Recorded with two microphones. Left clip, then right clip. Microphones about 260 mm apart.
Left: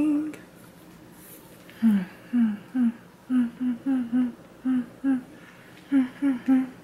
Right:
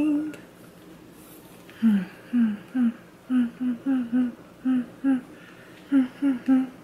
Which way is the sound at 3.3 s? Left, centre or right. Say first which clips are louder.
Even; centre.